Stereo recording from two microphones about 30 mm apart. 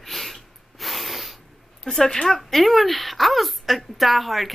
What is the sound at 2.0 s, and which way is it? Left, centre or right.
Speech, left.